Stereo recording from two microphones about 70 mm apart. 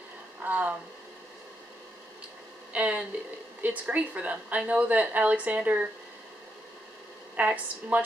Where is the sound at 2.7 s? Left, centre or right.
Centre.